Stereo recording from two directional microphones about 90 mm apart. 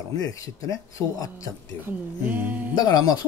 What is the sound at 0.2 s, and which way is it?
Speech, 40° left (ahead or behind).